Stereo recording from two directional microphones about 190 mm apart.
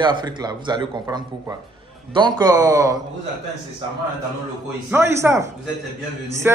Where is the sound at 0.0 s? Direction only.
25° right (ahead or behind).